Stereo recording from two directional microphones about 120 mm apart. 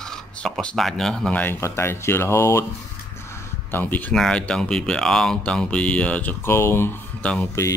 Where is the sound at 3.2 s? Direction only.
20° left (ahead or behind).